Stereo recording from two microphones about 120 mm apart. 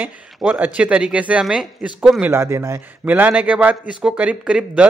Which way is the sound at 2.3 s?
20° right (ahead or behind).